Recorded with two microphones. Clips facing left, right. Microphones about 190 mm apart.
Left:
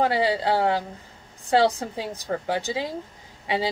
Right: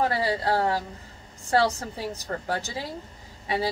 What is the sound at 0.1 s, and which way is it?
Speech, 20° left (ahead or behind).